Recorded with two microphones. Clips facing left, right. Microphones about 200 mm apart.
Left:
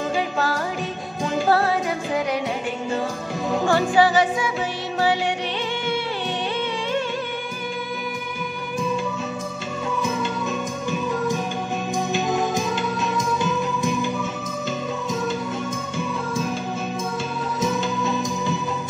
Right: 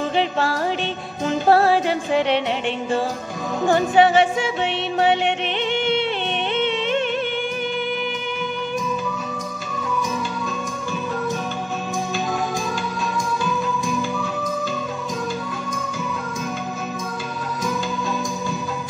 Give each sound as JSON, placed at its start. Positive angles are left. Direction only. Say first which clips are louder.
{"t": 0.1, "sound": "music", "louder": "right 2 dB", "side_deg": -25}
{"t": 3.6, "sound": "music", "louder": "right 3 dB", "side_deg": -20}
{"t": 6.5, "sound": "music", "louder": "right 7 dB", "side_deg": -25}